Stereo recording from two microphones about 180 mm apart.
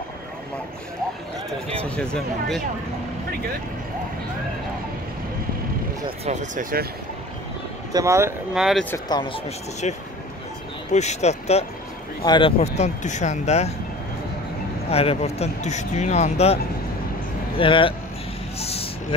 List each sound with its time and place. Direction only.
1.7 s speech: 5° left (ahead or behind)
6.2 s speech: 40° right (ahead or behind)
7.9 s speech: 15° right (ahead or behind)
8.5 s speech: centre (ahead or behind)
8.9 s speech: 25° left (ahead or behind)
10.9 s speech: 40° left (ahead or behind)
14.9 s speech: 35° left (ahead or behind)
17.6 s speech: 30° left (ahead or behind)
18.6 s a sound: 35° left (ahead or behind)